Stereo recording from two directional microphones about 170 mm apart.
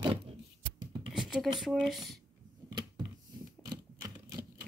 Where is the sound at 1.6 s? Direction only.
Centre (ahead or behind).